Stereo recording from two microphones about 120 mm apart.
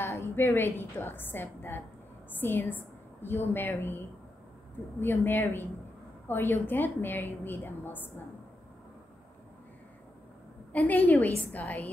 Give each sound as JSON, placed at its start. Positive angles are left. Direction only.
{"t": 0.0, "sound": "a woman's voice", "side_deg": 20}
{"t": 5.0, "sound": "a woman's voice", "side_deg": 15}
{"t": 10.7, "sound": "a woman's voice", "side_deg": 15}